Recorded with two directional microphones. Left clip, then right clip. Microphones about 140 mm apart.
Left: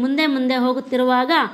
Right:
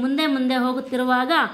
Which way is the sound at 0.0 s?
25° left (ahead or behind).